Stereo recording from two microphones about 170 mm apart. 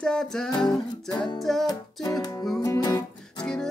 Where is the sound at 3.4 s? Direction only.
5° left (ahead or behind).